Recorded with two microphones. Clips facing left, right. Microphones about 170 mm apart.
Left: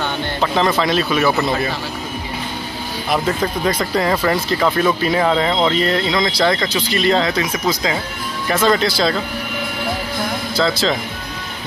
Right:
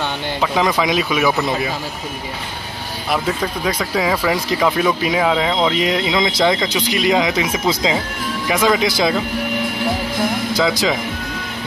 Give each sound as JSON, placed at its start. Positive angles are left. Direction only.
{"t": 0.4, "sound": "speech", "side_deg": -10}
{"t": 3.1, "sound": "speech", "side_deg": -5}
{"t": 8.5, "sound": "speech", "side_deg": -10}
{"t": 10.5, "sound": "speech", "side_deg": -15}